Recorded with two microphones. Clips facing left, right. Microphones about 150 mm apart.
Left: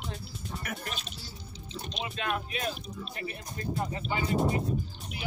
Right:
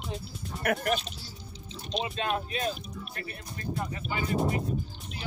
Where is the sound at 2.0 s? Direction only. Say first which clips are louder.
Right 2 dB; 25° right (ahead or behind).